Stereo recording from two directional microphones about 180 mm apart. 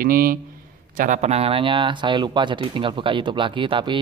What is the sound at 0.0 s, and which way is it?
Speech, 50° right (ahead or behind).